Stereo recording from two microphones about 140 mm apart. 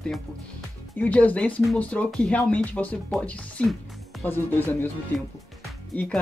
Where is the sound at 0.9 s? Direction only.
10° left (ahead or behind).